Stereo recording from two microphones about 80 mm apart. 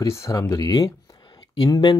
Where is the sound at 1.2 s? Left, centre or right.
Left.